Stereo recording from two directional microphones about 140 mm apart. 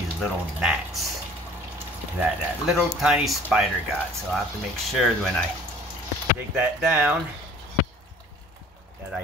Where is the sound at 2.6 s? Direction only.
5° right (ahead or behind).